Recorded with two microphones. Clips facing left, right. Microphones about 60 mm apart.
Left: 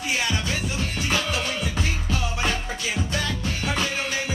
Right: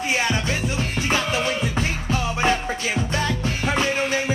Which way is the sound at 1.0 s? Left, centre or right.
Right.